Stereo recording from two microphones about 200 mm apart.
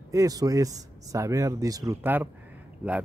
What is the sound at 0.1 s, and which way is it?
Speech, 15° right (ahead or behind).